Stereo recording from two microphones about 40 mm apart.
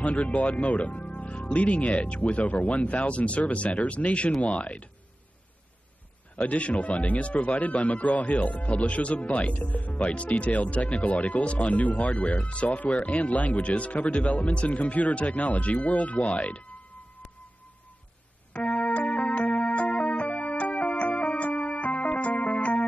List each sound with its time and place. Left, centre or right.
0.0 s speech: left
6.3 s speech: left
18.7 s music: left
18.9 s music: left